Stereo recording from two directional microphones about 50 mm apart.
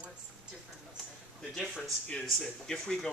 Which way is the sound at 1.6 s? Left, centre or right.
Centre.